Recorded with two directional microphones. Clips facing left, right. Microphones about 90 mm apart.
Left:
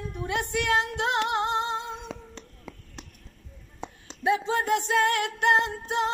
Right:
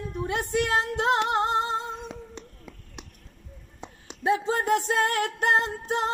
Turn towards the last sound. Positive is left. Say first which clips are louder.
# even
turn(degrees=-40)  # may be behind; listen again after turning